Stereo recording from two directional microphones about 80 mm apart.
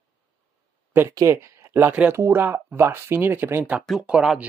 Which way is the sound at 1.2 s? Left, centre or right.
Right.